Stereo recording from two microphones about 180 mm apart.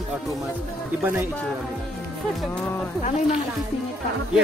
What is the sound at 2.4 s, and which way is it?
Speech, 5° left (ahead or behind).